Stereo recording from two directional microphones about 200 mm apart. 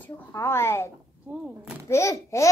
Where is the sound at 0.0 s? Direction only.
10° left (ahead or behind).